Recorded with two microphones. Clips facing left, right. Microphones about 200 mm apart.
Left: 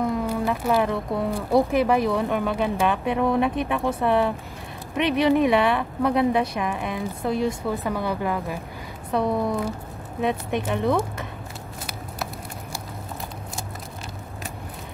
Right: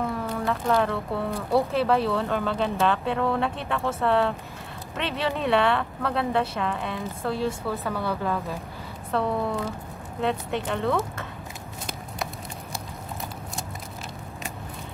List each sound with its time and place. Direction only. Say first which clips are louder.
0.0 s speech: left 4 dB; 15° left (ahead or behind)